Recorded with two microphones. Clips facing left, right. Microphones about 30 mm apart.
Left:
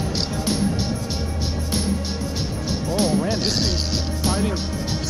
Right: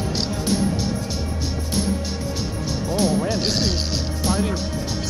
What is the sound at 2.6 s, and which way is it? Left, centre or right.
Music, centre.